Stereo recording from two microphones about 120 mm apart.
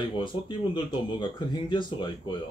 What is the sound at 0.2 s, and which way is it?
Speech, 40° left (ahead or behind).